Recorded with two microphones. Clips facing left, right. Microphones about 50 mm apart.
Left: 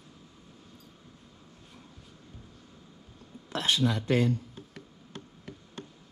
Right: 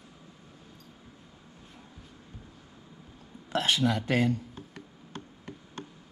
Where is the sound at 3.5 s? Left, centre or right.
Right.